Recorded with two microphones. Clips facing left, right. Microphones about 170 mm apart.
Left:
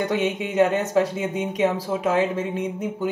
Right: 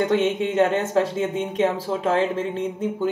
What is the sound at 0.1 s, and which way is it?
Speech, 10° left (ahead or behind).